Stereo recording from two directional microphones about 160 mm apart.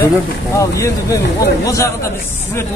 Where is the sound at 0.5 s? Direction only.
20° left (ahead or behind).